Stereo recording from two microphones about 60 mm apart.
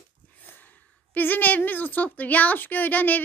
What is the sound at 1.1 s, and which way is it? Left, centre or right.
A woman's voice, left.